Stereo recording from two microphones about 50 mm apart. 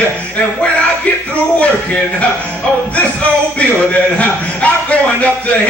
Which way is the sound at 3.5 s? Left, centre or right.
Left.